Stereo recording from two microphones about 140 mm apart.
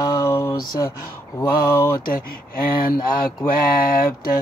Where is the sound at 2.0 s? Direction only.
90° left.